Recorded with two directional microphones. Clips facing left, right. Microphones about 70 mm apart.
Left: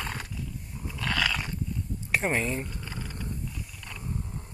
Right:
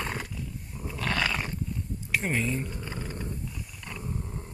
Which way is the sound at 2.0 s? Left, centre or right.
Left.